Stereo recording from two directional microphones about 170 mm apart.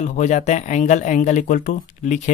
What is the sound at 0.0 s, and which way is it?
Speech, 45° left (ahead or behind).